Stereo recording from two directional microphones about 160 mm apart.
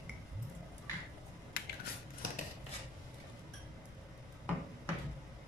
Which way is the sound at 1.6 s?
80° left.